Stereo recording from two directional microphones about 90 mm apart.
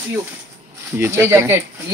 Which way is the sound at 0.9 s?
25° right (ahead or behind).